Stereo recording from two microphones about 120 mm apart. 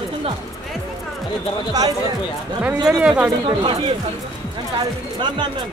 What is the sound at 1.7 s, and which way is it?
Speech, 30° right (ahead or behind).